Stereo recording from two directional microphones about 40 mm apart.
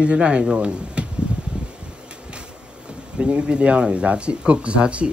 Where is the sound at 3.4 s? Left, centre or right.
Right.